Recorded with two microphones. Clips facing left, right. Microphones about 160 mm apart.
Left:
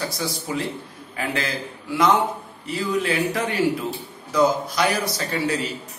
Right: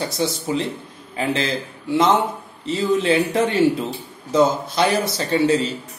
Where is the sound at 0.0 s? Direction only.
25° right (ahead or behind).